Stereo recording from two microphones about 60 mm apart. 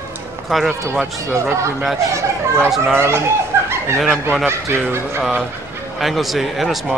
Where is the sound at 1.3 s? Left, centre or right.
Right.